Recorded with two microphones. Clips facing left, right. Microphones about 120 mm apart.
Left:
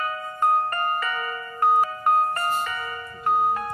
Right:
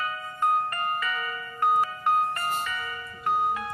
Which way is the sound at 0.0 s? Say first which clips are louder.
Left 3 dB; 45° left (ahead or behind).